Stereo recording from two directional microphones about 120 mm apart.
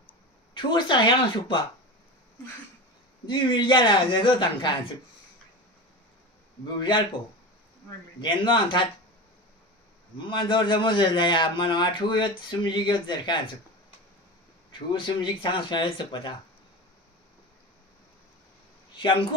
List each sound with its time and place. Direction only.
0.6 s a man's voice: 40° left (ahead or behind)
3.3 s a man's voice: 40° left (ahead or behind)
6.8 s a man's voice: 45° left (ahead or behind)
8.2 s a man's voice: 40° left (ahead or behind)
10.1 s a man's voice: 40° left (ahead or behind)
14.7 s a man's voice: 40° left (ahead or behind)